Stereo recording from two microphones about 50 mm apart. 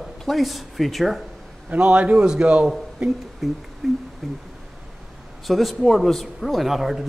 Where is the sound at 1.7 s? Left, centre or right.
Right.